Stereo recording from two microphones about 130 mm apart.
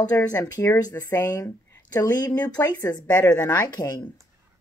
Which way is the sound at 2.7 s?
25° left (ahead or behind).